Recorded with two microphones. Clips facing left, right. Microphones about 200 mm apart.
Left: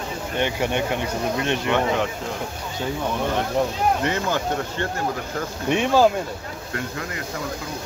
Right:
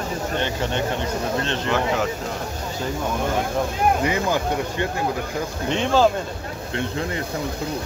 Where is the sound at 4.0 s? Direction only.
10° right (ahead or behind).